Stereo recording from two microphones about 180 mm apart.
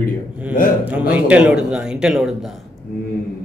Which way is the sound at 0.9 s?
5° right (ahead or behind).